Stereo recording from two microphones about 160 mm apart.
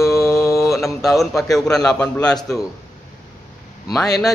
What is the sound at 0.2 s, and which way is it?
Mantra, 20° left (ahead or behind).